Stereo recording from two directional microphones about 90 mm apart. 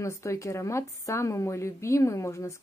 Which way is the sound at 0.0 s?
35° left (ahead or behind).